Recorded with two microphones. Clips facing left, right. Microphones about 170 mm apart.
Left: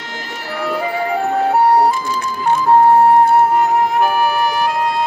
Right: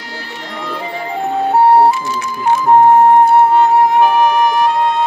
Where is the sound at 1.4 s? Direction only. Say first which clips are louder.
Right 4 dB; 25° right (ahead or behind).